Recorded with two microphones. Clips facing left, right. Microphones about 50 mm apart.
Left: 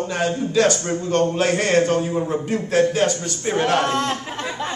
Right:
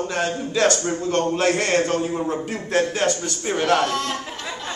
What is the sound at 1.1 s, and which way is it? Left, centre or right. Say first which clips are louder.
A man's voice: left 2 dB; centre.